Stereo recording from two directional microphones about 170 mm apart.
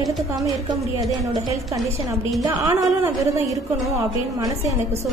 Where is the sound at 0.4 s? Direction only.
20° right (ahead or behind).